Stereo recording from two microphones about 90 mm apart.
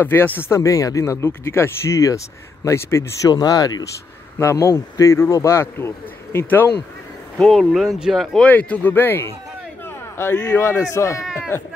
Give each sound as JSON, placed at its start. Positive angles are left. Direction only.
{"t": 0.0, "sound": "speech", "side_deg": 25}
{"t": 0.5, "sound": "speech", "side_deg": 40}
{"t": 4.4, "sound": "speech", "side_deg": 30}
{"t": 7.3, "sound": "speech", "side_deg": 5}
{"t": 8.5, "sound": "a man's voice", "side_deg": 15}